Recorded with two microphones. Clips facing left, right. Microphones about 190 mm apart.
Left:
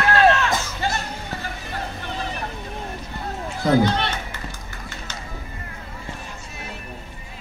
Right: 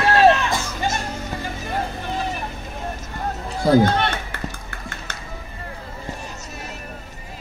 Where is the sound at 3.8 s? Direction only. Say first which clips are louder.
Right 2 dB; 50° right (ahead or behind).